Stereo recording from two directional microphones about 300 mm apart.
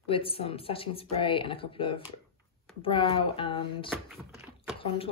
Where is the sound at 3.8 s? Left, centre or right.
Centre.